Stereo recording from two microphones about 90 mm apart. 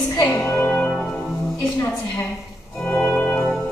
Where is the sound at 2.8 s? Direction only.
15° left (ahead or behind).